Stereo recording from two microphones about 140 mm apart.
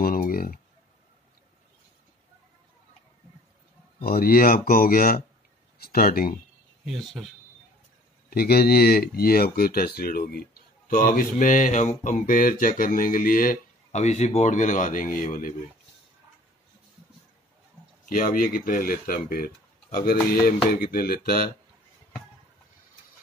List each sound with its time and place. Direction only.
0.0 s a sound: 90° left
4.0 s speech: 90° left
6.9 s speech: centre (ahead or behind)
8.3 s speech: 90° left
13.9 s speech: 50° left (ahead or behind); by 15.5 s 80° left
18.0 s speech: 85° left